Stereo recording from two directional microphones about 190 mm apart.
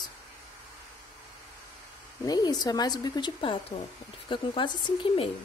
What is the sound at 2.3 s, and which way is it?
Speech, 20° left (ahead or behind).